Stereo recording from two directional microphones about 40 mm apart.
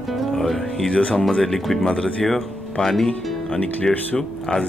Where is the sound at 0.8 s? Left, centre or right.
Centre.